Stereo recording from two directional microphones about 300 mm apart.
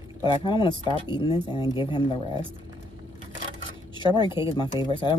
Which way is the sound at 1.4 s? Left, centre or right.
Centre.